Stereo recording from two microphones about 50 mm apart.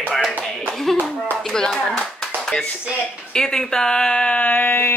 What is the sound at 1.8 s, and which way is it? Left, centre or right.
Clapping, centre.